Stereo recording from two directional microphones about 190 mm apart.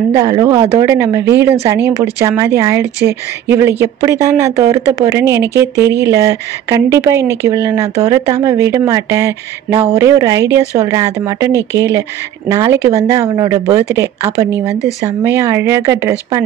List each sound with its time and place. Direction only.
0.1 s a woman's voice: 20° right (ahead or behind)